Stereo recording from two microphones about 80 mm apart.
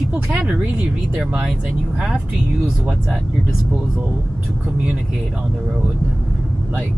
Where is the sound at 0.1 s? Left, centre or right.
Centre.